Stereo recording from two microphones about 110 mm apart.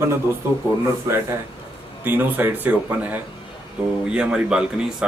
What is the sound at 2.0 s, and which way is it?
Speech, 15° right (ahead or behind).